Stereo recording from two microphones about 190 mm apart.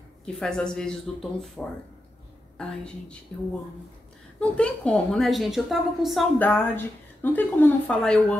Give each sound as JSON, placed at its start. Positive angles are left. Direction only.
{"t": 0.2, "sound": "a woman's voice", "side_deg": 5}
{"t": 4.4, "sound": "a woman's voice", "side_deg": 5}